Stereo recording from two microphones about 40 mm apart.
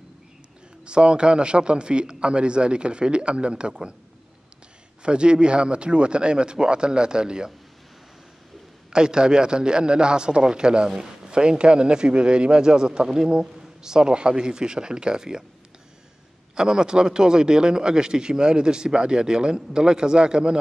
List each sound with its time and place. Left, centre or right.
0.8 s a man's voice: right
5.0 s a man's voice: right
8.9 s a man's voice: centre
16.5 s a man's voice: centre